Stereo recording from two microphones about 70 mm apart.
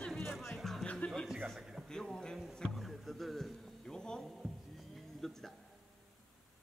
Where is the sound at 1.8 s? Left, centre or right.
Centre.